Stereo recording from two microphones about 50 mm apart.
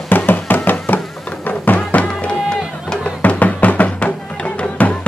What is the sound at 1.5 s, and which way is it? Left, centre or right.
Music, left.